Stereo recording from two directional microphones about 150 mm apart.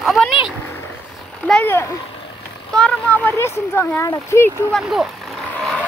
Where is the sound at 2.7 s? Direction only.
5° left (ahead or behind).